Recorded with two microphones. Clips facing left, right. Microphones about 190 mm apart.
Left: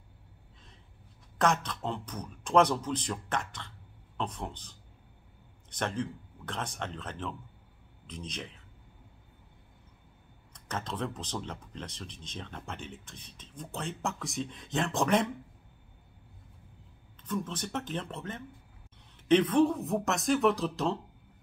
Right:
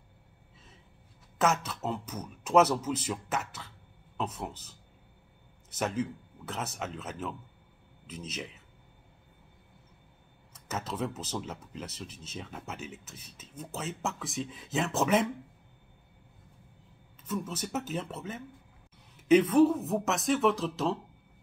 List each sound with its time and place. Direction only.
1.4 s speech: 5° right (ahead or behind)
10.5 s speech: 5° right (ahead or behind)
17.2 s speech: 10° right (ahead or behind)